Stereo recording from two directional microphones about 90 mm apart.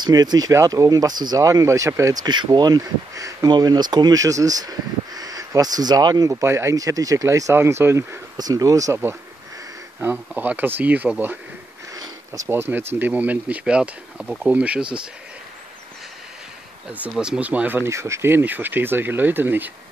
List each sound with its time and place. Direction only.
0.0 s speech: 50° right (ahead or behind)
2.2 s speech: 55° right (ahead or behind); by 3.5 s 40° right (ahead or behind)
3.5 s speech: 50° right (ahead or behind)
6.3 s speech: 30° right (ahead or behind)
8.4 s speech: 45° right (ahead or behind)
10.0 s speech: 20° right (ahead or behind)
12.4 s speech: 25° right (ahead or behind)
17.2 s speech: 15° right (ahead or behind)